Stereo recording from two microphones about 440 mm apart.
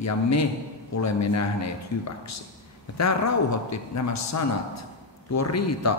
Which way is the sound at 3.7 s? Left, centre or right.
Left.